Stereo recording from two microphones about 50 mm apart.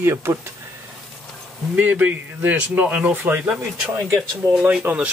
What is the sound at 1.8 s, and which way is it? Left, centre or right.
Speech, right.